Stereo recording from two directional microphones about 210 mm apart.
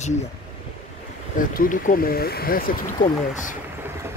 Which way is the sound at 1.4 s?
40° left (ahead or behind).